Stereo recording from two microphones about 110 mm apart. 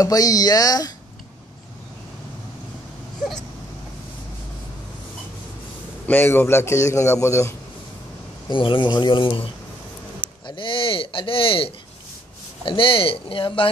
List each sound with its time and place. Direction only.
0.0 s speech: 35° left (ahead or behind)
6.0 s a man's voice: 20° left (ahead or behind)
8.5 s speech: 50° left (ahead or behind)